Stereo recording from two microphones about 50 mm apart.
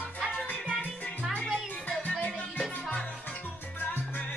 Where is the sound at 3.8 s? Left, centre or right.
Left.